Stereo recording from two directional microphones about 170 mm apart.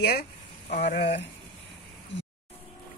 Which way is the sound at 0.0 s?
65° left (ahead or behind).